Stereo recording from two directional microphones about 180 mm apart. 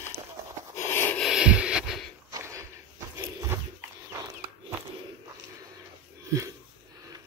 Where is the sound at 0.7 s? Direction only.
10° left (ahead or behind).